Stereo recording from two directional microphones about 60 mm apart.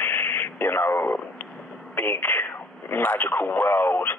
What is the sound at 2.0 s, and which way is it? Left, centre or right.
Speech, left.